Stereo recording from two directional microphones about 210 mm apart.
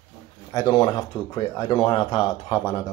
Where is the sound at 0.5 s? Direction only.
20° left (ahead or behind).